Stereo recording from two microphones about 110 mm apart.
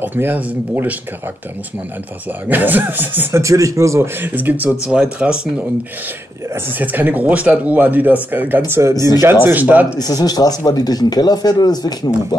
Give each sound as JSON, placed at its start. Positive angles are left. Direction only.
{"t": 0.0, "sound": "speech", "side_deg": -20}
{"t": 2.4, "sound": "speech", "side_deg": -15}
{"t": 6.5, "sound": "speech", "side_deg": -15}
{"t": 9.9, "sound": "speech", "side_deg": 35}